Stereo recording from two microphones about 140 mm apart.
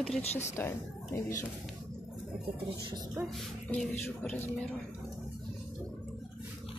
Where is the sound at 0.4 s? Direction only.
20° left (ahead or behind).